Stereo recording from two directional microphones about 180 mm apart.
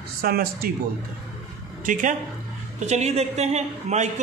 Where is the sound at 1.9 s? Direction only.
45° right (ahead or behind).